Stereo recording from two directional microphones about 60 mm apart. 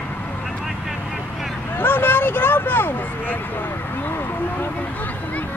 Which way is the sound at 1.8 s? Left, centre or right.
Left.